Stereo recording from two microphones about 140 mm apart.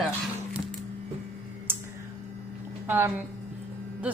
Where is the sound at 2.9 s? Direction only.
20° right (ahead or behind).